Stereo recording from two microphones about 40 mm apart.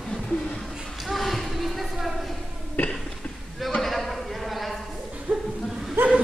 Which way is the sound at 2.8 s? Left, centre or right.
Left.